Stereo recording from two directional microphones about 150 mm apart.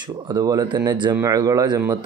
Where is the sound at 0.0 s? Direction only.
25° right (ahead or behind).